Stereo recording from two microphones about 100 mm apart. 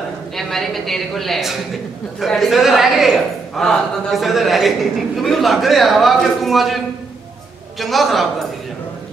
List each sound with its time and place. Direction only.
0.4 s a man's voice: centre (ahead or behind)
7.8 s a man's voice: centre (ahead or behind)